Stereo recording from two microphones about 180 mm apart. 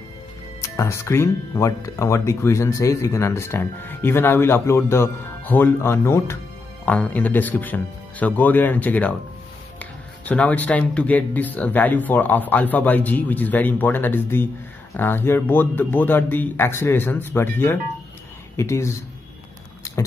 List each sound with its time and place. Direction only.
0.6 s speech: 15° left (ahead or behind)